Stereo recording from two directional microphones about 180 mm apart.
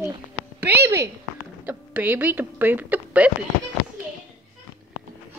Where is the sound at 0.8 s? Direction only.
15° right (ahead or behind).